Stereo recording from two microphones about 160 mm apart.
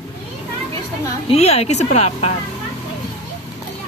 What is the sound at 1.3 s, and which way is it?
A woman's voice, 40° left (ahead or behind).